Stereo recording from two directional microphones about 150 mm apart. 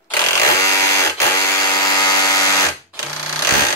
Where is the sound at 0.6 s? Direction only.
20° left (ahead or behind).